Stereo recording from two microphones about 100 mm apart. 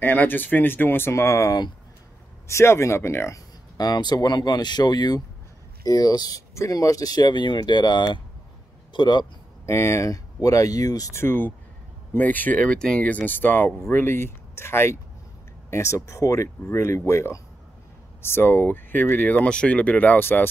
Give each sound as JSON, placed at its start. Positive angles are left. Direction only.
{"t": 0.0, "sound": "speech", "side_deg": 20}
{"t": 3.7, "sound": "speech", "side_deg": 45}
{"t": 9.7, "sound": "speech", "side_deg": 25}
{"t": 11.1, "sound": "speech", "side_deg": 20}